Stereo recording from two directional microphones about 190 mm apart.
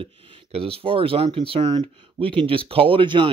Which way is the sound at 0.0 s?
30° right (ahead or behind).